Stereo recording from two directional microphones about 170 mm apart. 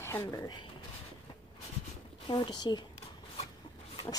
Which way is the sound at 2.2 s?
25° left (ahead or behind).